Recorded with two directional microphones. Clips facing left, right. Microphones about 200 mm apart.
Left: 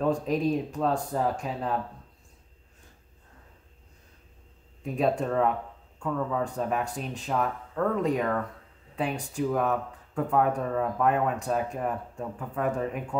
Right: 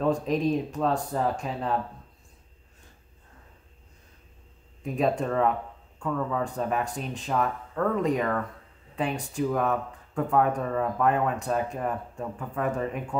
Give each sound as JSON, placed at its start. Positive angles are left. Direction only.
{"t": 0.0, "sound": "speech", "side_deg": 5}
{"t": 4.9, "sound": "speech", "side_deg": 0}